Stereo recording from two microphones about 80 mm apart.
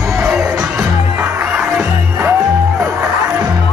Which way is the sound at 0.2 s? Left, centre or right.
Centre.